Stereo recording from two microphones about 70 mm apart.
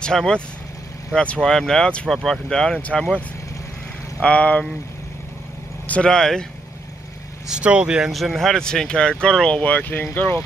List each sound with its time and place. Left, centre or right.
0.0 s speech: centre
4.2 s speech: centre
5.9 s speech: centre
7.4 s speech: centre
8.1 s speech: centre; by 10.0 s left